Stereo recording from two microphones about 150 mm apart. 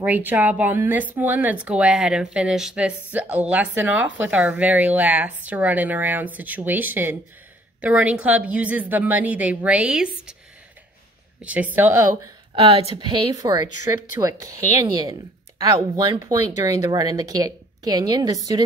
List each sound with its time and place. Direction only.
0.0 s speech: 10° right (ahead or behind)
11.4 s speech: 10° right (ahead or behind)
12.5 s a woman's voice: 40° right (ahead or behind)
16.3 s a woman's voice: 25° right (ahead or behind)